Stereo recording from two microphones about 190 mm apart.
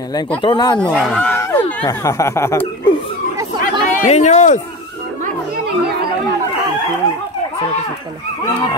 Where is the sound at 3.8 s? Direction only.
40° left (ahead or behind).